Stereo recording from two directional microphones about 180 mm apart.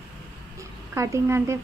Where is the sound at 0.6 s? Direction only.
15° right (ahead or behind).